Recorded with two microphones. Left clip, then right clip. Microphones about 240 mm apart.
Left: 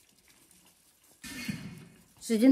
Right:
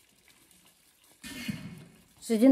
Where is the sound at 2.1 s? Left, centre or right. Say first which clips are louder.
Right 1 dB; right.